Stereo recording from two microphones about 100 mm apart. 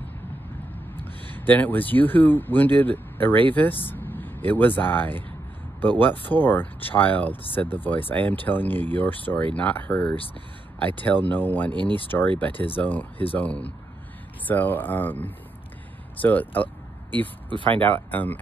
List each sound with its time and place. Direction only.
0.9 s speech: 20° left (ahead or behind)
11.7 s speech: 50° right (ahead or behind)
12.1 s speech: 20° left (ahead or behind)
17.6 s speech: 55° right (ahead or behind)
17.8 s speech: 20° left (ahead or behind)